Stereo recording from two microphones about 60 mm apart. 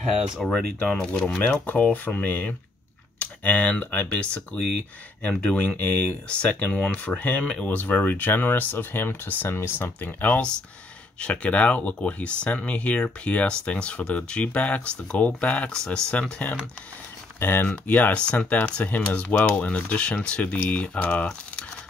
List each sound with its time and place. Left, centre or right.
0.4 s speech: centre
1.0 s speech: centre
1.3 s speech: left
10.0 s speech: left
15.7 s speech: centre
17.4 s speech: left
17.8 s speech: left